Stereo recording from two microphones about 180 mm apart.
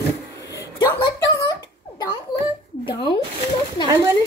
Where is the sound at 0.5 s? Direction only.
20° left (ahead or behind).